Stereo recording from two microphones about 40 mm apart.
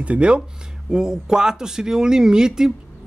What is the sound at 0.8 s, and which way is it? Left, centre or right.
Speech, centre.